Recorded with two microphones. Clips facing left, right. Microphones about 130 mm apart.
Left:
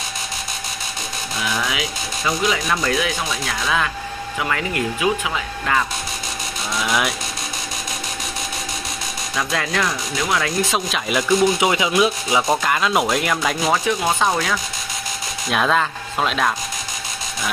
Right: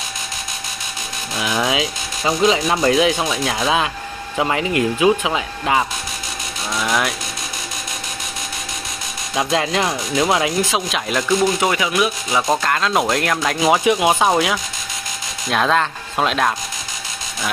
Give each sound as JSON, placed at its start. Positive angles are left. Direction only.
{"t": 1.6, "sound": "speech", "side_deg": -30}
{"t": 6.7, "sound": "vehicle", "side_deg": 0}
{"t": 9.3, "sound": "speech", "side_deg": -25}
{"t": 10.6, "sound": "speech", "side_deg": 0}
{"t": 11.6, "sound": "speech", "side_deg": 20}
{"t": 12.4, "sound": "speech", "side_deg": 5}
{"t": 13.7, "sound": "speech", "side_deg": -15}
{"t": 15.5, "sound": "speech", "side_deg": 0}